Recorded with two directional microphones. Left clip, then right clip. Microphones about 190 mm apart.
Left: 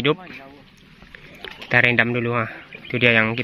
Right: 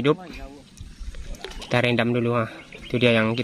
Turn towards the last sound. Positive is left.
turn(degrees=-10)  # may be behind; listen again after turning